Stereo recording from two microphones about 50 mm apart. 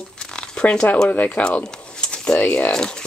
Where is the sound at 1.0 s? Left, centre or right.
Left.